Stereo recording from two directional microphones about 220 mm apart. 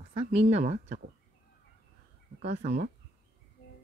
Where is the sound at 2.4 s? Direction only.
30° right (ahead or behind).